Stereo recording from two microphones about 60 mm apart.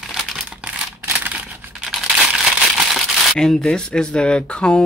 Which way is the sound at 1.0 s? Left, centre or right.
Right.